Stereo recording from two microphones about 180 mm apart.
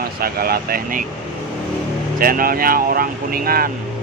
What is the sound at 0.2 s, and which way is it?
Speech, 55° right (ahead or behind).